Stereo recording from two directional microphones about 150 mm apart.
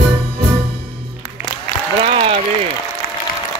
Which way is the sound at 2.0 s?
40° right (ahead or behind).